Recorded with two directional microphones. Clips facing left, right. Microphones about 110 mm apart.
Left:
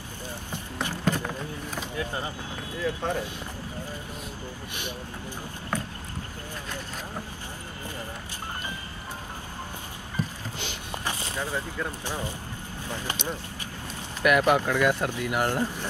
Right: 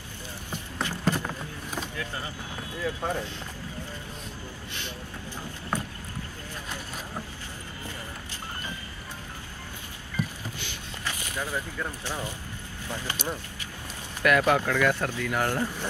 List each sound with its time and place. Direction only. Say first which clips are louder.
0.5 s a sound: right 1 dB; 15° right (ahead or behind)
2.0 s speech: left 4 dB; 25° left (ahead or behind)
2.8 s speech: left 1 dB; 15° right (ahead or behind)
5.7 s vehicle: even; 15° right (ahead or behind)
11.1 s vehicle: left 1 dB; 25° left (ahead or behind)
11.5 s speech: left 1 dB; 20° left (ahead or behind)
14.2 s speech: left 1 dB; 15° left (ahead or behind)